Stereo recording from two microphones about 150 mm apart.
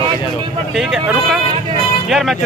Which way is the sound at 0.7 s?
Centre (ahead or behind).